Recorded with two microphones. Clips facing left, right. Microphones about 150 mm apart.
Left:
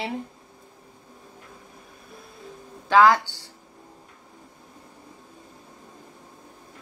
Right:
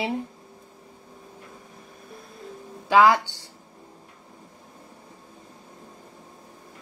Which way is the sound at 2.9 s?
15° right (ahead or behind).